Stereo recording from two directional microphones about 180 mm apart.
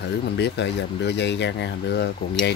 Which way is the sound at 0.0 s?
70° left (ahead or behind).